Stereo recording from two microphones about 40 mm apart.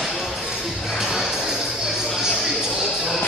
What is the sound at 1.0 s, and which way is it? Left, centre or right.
Music, centre.